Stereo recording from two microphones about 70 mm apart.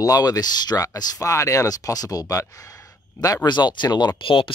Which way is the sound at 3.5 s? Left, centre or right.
Left.